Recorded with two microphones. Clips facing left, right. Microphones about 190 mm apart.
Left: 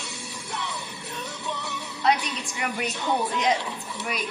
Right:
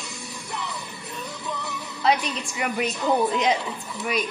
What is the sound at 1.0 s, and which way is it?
Music, 75° left (ahead or behind).